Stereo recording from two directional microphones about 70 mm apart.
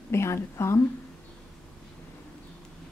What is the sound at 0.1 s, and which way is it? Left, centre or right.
Speech, left.